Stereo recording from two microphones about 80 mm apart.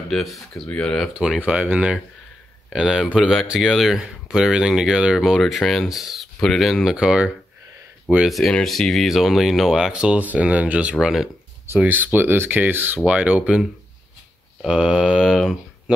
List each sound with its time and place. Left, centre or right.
0.1 s speech: centre
1.4 s speech: centre
8.3 s speech: centre
11.8 s speech: right
14.7 s speech: centre